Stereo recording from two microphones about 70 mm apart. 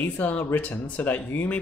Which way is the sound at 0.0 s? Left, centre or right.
Left.